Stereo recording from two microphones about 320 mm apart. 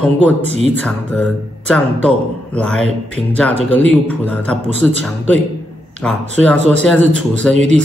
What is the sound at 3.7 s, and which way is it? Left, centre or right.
Speech, centre.